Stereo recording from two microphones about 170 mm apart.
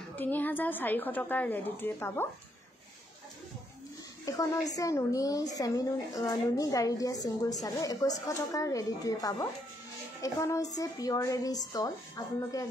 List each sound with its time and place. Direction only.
0.1 s a woman's voice: 10° left (ahead or behind)
4.3 s a woman's voice: 20° left (ahead or behind)